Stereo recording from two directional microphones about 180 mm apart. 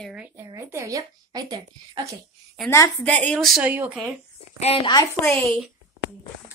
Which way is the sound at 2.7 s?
15° left (ahead or behind).